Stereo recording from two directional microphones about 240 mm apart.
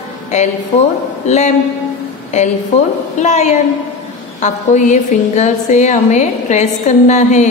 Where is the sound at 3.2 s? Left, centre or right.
Left.